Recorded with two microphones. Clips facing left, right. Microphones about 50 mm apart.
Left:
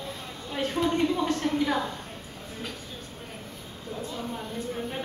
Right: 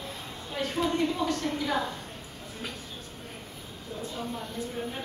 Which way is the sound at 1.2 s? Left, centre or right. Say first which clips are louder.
Left 4 dB; left.